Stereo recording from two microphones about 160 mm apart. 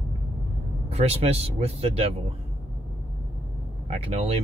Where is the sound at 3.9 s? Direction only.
40° right (ahead or behind).